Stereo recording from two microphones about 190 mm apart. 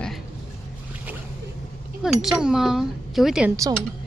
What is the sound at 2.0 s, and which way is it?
Speech, centre (ahead or behind).